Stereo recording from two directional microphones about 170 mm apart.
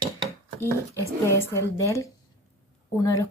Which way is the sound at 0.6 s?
20° right (ahead or behind).